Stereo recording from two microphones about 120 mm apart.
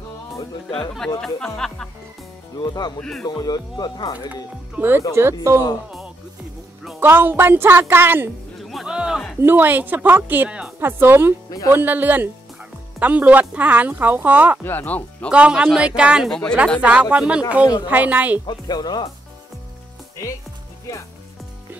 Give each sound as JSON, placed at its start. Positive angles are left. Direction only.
{"t": 0.7, "sound": "speech", "side_deg": 5}
{"t": 2.6, "sound": "speech", "side_deg": 35}
{"t": 3.0, "sound": "speech", "side_deg": 5}
{"t": 3.3, "sound": "speech", "side_deg": 35}
{"t": 4.3, "sound": "speech", "side_deg": -15}
{"t": 7.0, "sound": "speech", "side_deg": -20}
{"t": 8.6, "sound": "music", "side_deg": 0}
{"t": 9.4, "sound": "speech", "side_deg": -15}
{"t": 14.6, "sound": "speech", "side_deg": 15}
{"t": 15.3, "sound": "speech", "side_deg": -10}
{"t": 16.3, "sound": "speech", "side_deg": 10}
{"t": 16.8, "sound": "speech", "side_deg": -10}
{"t": 18.5, "sound": "speech", "side_deg": 35}